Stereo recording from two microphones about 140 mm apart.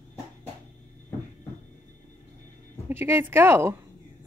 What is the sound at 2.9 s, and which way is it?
Speech, 15° right (ahead or behind).